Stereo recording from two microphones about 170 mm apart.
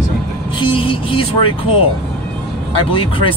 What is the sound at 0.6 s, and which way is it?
Speech, 30° left (ahead or behind).